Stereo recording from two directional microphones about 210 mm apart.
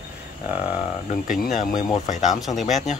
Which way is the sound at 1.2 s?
40° left (ahead or behind).